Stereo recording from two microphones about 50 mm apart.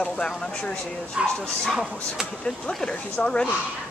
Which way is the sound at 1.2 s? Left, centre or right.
Right.